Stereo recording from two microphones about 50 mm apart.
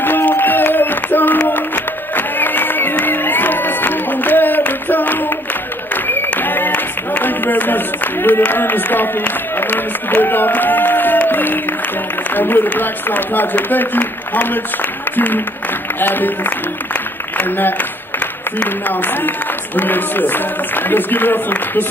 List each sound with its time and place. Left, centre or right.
0.0 s a sound: left
2.1 s music: left
12.4 s speech: left